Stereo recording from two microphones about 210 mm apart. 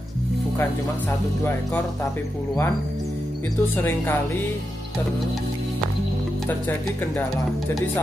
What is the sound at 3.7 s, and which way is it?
Music, 10° left (ahead or behind).